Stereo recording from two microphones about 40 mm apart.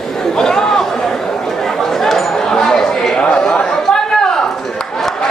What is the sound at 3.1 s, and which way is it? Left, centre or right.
Chatter, left.